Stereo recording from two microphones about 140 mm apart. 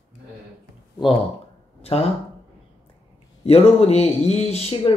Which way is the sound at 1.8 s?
45° left (ahead or behind).